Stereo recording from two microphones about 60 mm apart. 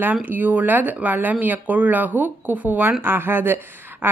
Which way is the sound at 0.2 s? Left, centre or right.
Right.